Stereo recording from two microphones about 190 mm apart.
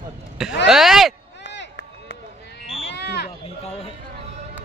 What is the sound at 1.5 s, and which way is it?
Run, 65° left (ahead or behind).